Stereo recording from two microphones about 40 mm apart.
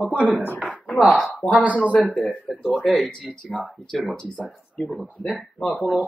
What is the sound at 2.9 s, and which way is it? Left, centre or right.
Speech, centre.